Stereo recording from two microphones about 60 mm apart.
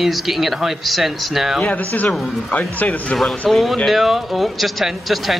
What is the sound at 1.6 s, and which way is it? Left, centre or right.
A man's voice, left.